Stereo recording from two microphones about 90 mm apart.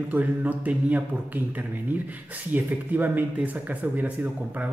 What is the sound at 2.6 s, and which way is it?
Speech, 20° right (ahead or behind).